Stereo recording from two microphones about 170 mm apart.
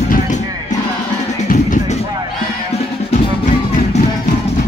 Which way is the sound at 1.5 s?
50° left (ahead or behind).